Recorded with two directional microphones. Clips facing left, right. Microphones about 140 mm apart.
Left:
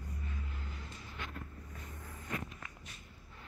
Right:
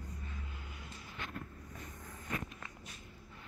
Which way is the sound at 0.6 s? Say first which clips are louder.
Left 3 dB; 15° right (ahead or behind).